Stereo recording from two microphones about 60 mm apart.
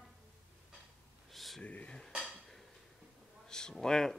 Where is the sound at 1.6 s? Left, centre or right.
Left.